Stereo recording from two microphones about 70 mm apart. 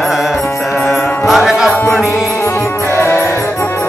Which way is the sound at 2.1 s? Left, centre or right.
Left.